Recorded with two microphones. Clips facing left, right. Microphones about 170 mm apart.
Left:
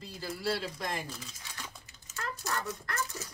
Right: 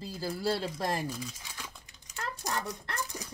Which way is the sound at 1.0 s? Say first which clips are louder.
Right 7 dB; 10° right (ahead or behind).